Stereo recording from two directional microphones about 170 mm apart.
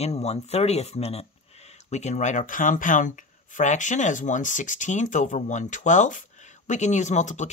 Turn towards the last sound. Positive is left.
turn(degrees=45)  # may be behind; listen again after turning